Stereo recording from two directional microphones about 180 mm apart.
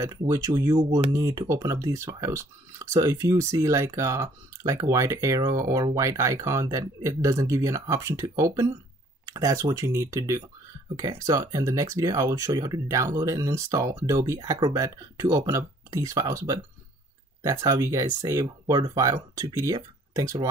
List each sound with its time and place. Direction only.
0.0 s speech: 20° right (ahead or behind)